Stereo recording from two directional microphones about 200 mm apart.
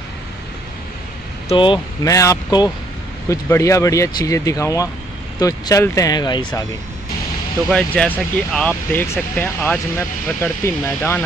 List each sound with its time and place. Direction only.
1.5 s speech: 25° left (ahead or behind)
7.7 s speech: 5° left (ahead or behind)